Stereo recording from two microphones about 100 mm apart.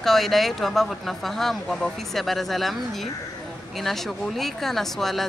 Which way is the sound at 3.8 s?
Centre (ahead or behind).